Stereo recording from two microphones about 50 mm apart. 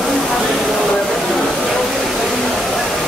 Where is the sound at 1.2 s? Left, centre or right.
Centre.